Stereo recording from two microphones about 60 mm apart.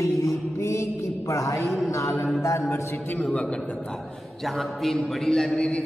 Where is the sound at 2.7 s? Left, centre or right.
Left.